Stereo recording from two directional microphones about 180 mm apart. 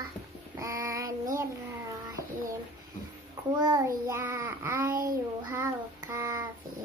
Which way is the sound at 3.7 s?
15° right (ahead or behind).